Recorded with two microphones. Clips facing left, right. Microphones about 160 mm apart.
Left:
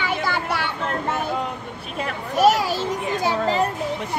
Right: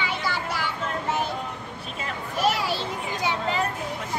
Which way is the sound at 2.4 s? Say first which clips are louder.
Left 7 dB; 40° left (ahead or behind).